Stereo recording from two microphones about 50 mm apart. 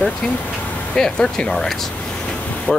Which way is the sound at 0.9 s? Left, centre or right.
Centre.